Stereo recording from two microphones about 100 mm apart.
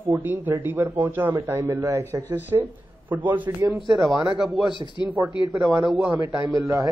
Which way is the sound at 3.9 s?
Centre (ahead or behind).